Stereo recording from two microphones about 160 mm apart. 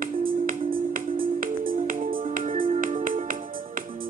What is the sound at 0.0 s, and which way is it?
Music, 60° right (ahead or behind).